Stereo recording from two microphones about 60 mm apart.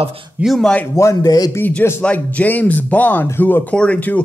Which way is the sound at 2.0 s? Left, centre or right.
Left.